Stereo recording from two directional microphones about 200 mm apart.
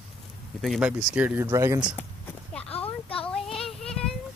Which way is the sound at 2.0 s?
10° left (ahead or behind).